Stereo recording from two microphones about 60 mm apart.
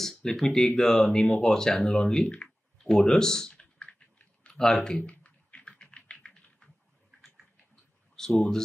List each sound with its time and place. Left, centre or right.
0.0 s speech: centre
5.1 s typing: left
7.2 s a sound: centre
8.2 s speech: centre